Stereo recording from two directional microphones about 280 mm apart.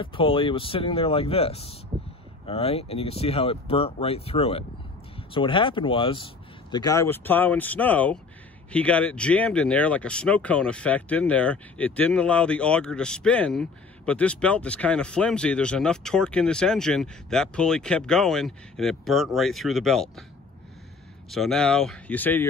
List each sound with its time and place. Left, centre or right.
0.0 s speech: centre
21.3 s speech: centre